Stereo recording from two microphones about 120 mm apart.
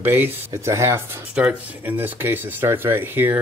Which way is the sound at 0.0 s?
20° right (ahead or behind).